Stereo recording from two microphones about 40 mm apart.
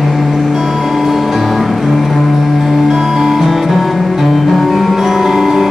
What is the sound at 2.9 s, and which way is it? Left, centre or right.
Music, centre.